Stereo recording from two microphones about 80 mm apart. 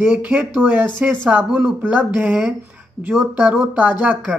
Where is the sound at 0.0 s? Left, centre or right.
Centre.